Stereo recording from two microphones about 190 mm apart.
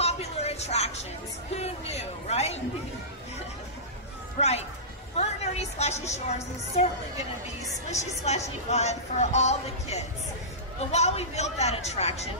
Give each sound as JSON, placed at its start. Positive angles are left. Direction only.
{"t": 0.0, "sound": "music", "side_deg": 35}
{"t": 1.5, "sound": "a sound", "side_deg": 35}
{"t": 4.4, "sound": "speech", "side_deg": 35}
{"t": 5.1, "sound": "a sound", "side_deg": 35}
{"t": 6.1, "sound": "speech", "side_deg": 35}
{"t": 8.2, "sound": "speech", "side_deg": 35}